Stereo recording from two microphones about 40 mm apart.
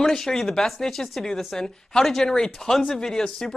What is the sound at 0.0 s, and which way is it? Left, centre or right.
Speech, centre.